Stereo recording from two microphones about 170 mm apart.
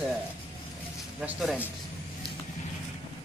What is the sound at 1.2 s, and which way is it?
Speech, 5° right (ahead or behind).